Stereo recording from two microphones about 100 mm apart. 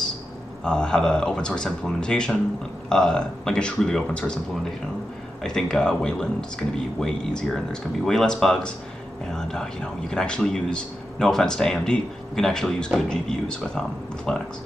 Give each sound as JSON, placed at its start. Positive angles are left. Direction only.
{"t": 0.7, "sound": "speech", "side_deg": 10}